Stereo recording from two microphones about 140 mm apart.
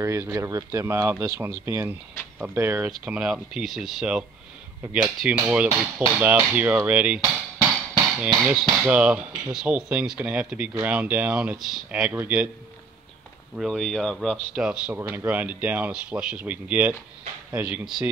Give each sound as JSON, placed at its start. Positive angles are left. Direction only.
{"t": 0.0, "sound": "speech", "side_deg": -20}
{"t": 3.1, "sound": "speech", "side_deg": -5}
{"t": 8.2, "sound": "speech", "side_deg": -10}
{"t": 13.6, "sound": "speech", "side_deg": 0}